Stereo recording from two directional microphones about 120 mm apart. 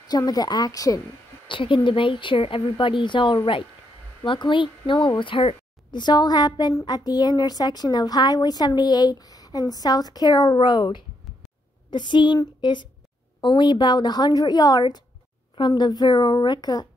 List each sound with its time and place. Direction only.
0.0 s speech: 35° left (ahead or behind)
1.5 s speech: 45° left (ahead or behind)